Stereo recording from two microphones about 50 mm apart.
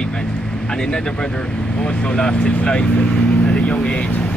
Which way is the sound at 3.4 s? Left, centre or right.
Left.